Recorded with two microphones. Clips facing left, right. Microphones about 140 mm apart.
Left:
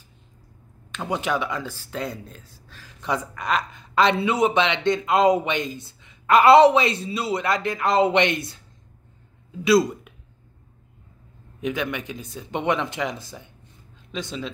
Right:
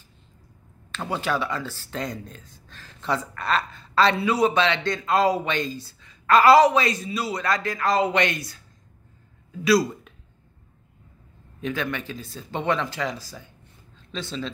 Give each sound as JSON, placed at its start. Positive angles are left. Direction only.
{"t": 0.9, "sound": "speech", "side_deg": 15}
{"t": 11.6, "sound": "speech", "side_deg": 15}